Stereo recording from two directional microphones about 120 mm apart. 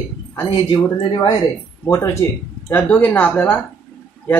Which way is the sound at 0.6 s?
30° left (ahead or behind).